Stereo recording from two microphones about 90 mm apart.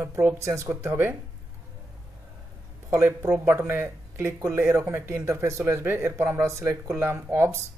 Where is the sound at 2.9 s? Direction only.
30° right (ahead or behind).